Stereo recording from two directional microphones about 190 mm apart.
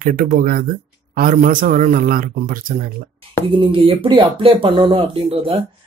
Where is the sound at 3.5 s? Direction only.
30° right (ahead or behind).